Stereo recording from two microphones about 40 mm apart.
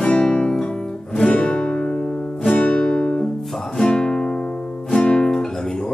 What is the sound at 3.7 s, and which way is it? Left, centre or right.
Music, centre.